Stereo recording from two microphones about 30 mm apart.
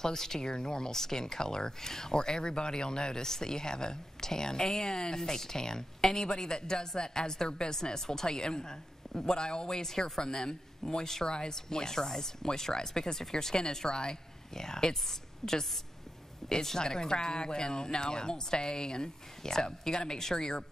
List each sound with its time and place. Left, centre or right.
0.0 s a woman's voice: centre